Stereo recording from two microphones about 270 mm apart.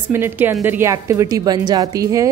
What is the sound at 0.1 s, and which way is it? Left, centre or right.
Speech, centre.